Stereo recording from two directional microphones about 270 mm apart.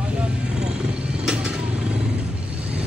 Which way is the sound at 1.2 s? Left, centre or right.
Centre.